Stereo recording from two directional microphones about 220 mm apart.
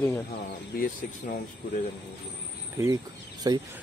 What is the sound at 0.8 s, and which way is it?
Speech, 40° left (ahead or behind).